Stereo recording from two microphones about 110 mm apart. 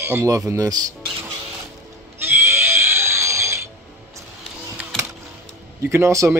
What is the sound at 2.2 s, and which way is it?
Pig, 20° right (ahead or behind).